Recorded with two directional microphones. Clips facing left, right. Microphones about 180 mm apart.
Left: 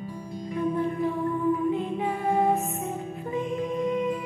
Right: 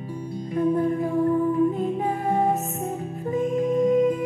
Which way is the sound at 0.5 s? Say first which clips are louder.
Right 5 dB; 45° right (ahead or behind).